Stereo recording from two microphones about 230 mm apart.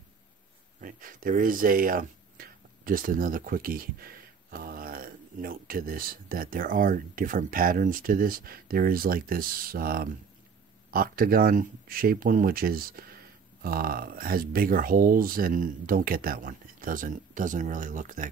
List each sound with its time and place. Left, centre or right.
0.7 s speech: right